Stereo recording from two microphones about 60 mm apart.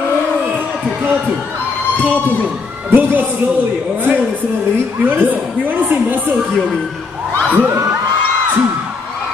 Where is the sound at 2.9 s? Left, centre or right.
Right.